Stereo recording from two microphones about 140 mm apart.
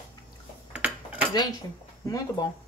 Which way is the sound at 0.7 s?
10° right (ahead or behind).